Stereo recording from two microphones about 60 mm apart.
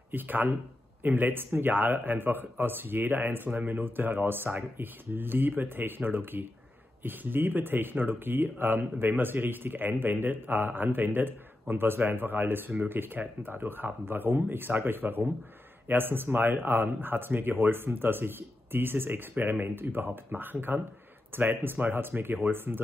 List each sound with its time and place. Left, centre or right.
0.1 s speech: right